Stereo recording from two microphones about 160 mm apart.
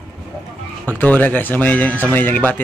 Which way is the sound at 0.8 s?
10° left (ahead or behind).